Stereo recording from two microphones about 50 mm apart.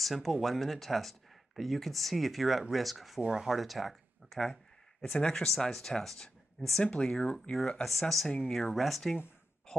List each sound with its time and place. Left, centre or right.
0.0 s speech: centre
7.8 s speech: centre
9.7 s a sound: centre